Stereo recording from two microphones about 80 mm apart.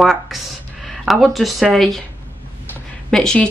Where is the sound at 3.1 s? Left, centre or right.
Centre.